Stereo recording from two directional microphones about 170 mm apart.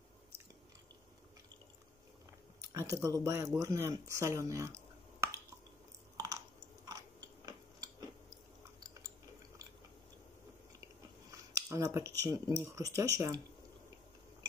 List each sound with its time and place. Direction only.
2.7 s speech: 20° right (ahead or behind)
6.1 s chewing: 20° right (ahead or behind)
6.9 s biting: 20° right (ahead or behind)
8.7 s chewing: 20° right (ahead or behind)
11.7 s speech: 15° right (ahead or behind)